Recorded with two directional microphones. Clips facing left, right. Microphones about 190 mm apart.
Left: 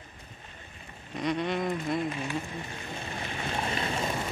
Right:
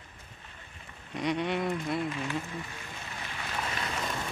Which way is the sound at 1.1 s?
10° right (ahead or behind).